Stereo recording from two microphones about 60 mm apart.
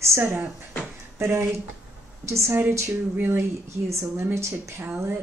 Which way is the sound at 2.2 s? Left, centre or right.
Right.